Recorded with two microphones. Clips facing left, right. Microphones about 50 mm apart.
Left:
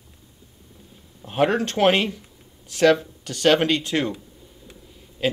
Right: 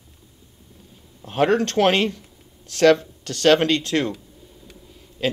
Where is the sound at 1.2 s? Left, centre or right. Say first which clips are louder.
Right 2 dB; centre.